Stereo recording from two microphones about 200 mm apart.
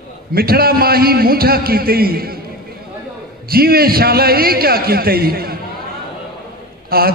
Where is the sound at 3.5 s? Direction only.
50° right (ahead or behind).